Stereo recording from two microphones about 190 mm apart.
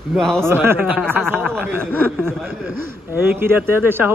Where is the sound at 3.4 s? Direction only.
10° right (ahead or behind).